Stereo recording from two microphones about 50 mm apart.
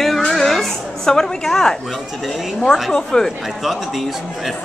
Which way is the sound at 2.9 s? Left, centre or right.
Centre.